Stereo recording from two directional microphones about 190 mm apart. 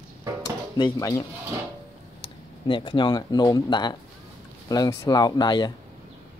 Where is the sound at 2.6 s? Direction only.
25° left (ahead or behind).